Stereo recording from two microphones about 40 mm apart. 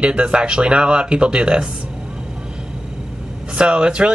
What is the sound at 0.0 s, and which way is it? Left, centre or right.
Speech, right.